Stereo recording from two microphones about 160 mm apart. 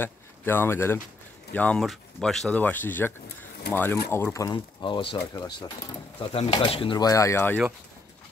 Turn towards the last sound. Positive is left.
turn(degrees=15)  # may be behind; listen again after turning